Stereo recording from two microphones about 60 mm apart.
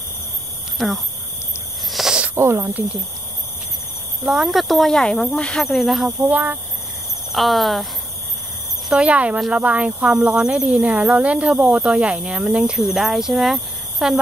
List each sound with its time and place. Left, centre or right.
0.7 s speech: centre
1.9 s a sound: centre
2.3 s speech: right
4.2 s speech: centre
5.6 s speech: centre
6.2 s a woman's voice: right
7.3 s speech: centre
9.0 s a woman's voice: right
10.2 s a woman's voice: centre